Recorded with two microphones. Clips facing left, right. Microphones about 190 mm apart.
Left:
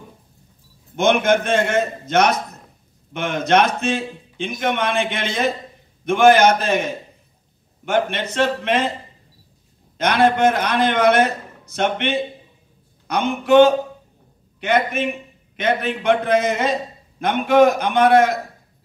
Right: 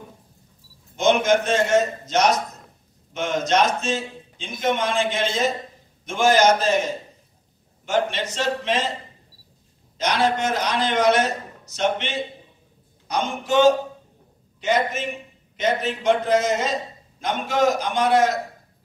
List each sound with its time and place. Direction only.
0.9 s a man's voice: 55° left (ahead or behind)
9.9 s a man's voice: 55° left (ahead or behind)